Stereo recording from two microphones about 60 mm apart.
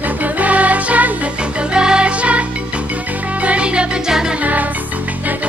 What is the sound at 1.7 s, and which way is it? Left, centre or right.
Music, centre.